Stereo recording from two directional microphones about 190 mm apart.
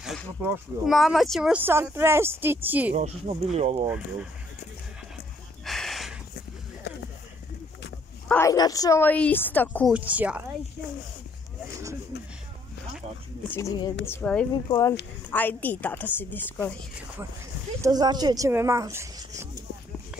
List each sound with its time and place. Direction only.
0.0 s speech: 5° right (ahead or behind)
2.9 s speech: 35° right (ahead or behind)
3.8 s speech: 5° right (ahead or behind)
5.7 s a sound: centre (ahead or behind)
8.3 s a woman's voice: 15° left (ahead or behind)
9.9 s speech: 5° right (ahead or behind)
13.5 s a woman's voice: 15° left (ahead or behind)
14.5 s speech: 20° left (ahead or behind)
15.3 s a woman's voice: 10° left (ahead or behind)
17.8 s speech: 20° right (ahead or behind)